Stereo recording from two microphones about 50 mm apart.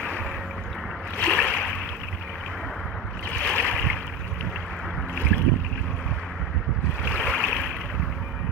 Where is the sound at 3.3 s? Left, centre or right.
Left.